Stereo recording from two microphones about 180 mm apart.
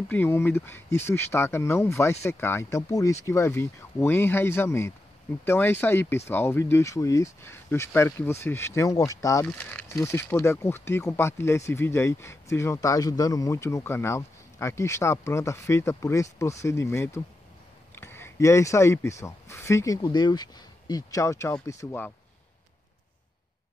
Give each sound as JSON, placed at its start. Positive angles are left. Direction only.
{"t": 0.1, "sound": "speech", "side_deg": 10}